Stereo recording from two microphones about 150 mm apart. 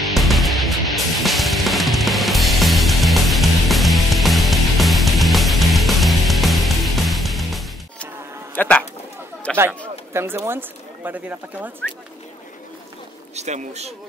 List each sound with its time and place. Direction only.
0.0 s music: centre (ahead or behind)
8.5 s a sound: 5° left (ahead or behind)
10.1 s speech: 15° right (ahead or behind)
13.3 s speech: 50° right (ahead or behind)